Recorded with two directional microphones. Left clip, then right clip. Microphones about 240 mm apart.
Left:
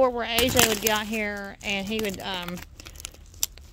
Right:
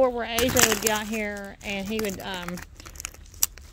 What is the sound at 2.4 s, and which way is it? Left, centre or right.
Typing, left.